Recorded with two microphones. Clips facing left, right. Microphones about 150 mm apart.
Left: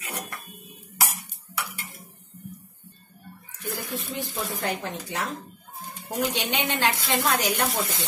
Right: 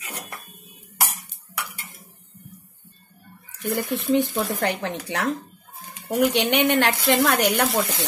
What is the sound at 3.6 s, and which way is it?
A woman's voice, 65° right (ahead or behind).